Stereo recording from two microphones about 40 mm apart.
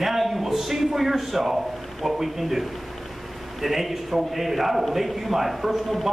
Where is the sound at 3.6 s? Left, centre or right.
Centre.